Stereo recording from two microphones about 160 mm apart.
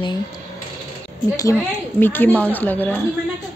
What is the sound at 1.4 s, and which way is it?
Speech, 15° left (ahead or behind).